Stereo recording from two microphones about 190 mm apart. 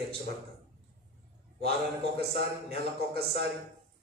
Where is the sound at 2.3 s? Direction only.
55° right (ahead or behind).